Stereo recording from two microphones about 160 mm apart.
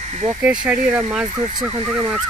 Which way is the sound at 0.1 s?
40° right (ahead or behind).